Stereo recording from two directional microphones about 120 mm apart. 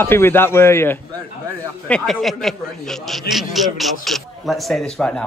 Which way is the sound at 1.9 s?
5° left (ahead or behind).